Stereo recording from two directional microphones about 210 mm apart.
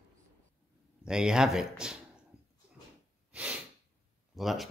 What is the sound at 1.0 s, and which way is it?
Speech, 5° right (ahead or behind).